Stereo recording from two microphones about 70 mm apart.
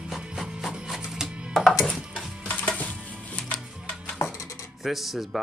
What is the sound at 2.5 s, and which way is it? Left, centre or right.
Music, left.